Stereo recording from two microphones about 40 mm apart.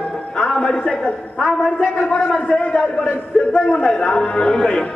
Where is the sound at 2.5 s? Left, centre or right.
Left.